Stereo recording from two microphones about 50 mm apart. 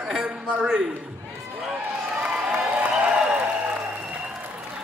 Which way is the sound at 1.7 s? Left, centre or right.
Right.